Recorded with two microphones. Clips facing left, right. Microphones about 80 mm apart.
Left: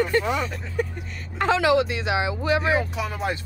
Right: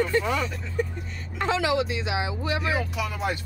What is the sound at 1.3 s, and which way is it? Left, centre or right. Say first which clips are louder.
Speech: left 5 dB; left.